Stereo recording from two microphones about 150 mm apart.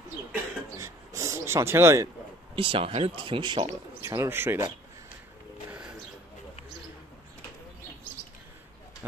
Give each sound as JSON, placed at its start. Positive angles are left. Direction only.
{"t": 0.3, "sound": "a sound", "side_deg": -20}
{"t": 2.5, "sound": "speech", "side_deg": -35}
{"t": 4.0, "sound": "speech", "side_deg": -20}
{"t": 5.7, "sound": "bird", "side_deg": -5}